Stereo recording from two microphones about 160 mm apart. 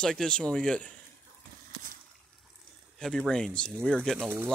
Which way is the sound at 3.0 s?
5° left (ahead or behind).